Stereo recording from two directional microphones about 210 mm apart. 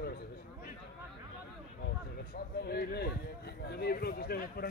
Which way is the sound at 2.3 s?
45° left (ahead or behind).